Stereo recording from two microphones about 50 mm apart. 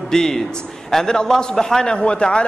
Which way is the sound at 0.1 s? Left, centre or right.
Centre.